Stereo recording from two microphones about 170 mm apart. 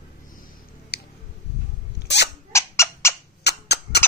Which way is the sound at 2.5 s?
15° left (ahead or behind).